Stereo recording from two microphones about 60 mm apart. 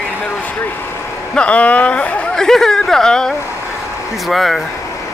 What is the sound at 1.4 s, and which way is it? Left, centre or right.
Speech, left.